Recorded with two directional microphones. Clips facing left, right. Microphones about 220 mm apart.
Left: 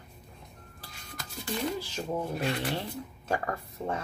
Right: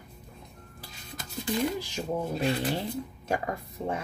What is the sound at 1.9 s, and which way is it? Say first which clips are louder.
Speech: right 2 dB; 20° right (ahead or behind).